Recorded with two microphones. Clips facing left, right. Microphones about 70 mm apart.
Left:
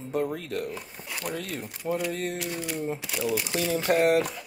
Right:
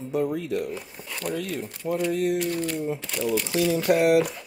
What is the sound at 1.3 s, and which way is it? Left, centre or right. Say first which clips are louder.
Speech: right 6 dB; left.